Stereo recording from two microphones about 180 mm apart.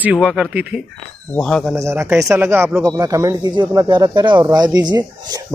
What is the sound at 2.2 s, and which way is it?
Speech, 5° right (ahead or behind).